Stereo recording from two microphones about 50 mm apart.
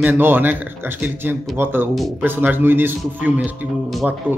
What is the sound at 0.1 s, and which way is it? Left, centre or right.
Speech, right.